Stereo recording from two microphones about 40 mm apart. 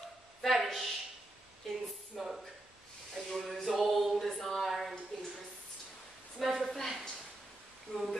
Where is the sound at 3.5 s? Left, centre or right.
Centre.